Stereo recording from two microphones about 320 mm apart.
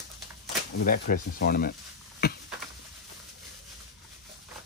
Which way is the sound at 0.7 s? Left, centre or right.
Left.